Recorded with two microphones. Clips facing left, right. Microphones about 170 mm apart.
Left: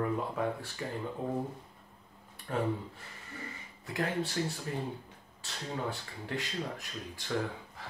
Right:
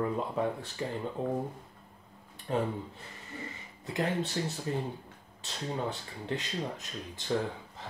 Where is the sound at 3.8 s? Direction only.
20° right (ahead or behind).